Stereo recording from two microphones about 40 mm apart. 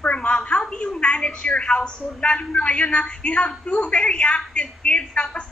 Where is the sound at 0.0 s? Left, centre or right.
Left.